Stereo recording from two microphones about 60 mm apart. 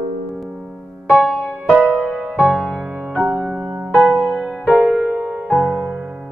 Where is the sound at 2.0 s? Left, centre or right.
Centre.